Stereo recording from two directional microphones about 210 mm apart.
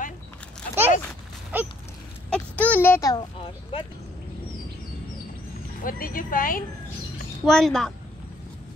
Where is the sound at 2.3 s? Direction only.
5° left (ahead or behind).